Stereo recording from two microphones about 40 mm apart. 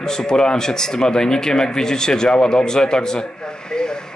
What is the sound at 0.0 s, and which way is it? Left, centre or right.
Speech, centre.